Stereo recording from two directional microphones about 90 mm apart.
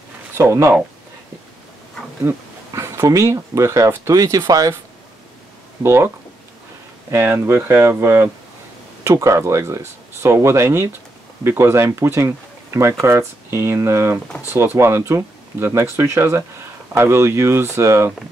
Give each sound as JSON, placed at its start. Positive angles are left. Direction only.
{"t": 0.4, "sound": "speech", "side_deg": -35}
{"t": 2.3, "sound": "speech", "side_deg": -25}
{"t": 2.7, "sound": "speech", "side_deg": -35}
{"t": 5.8, "sound": "speech", "side_deg": -30}
{"t": 7.1, "sound": "speech", "side_deg": -25}